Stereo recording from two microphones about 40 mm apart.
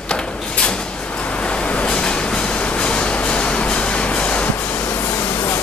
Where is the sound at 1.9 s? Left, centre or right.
Left.